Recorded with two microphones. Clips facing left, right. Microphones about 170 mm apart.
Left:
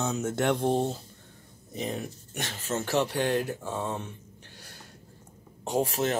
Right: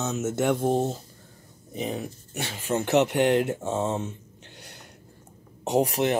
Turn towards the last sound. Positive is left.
turn(degrees=-20)  # may be behind; listen again after turning